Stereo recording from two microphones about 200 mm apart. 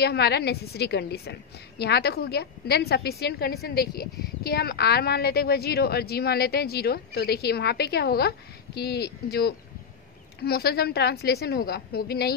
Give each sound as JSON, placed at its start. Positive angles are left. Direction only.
{"t": 0.0, "sound": "a woman's voice", "side_deg": 55}